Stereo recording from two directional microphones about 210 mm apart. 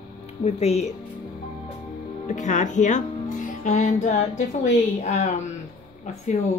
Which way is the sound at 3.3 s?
35° left (ahead or behind).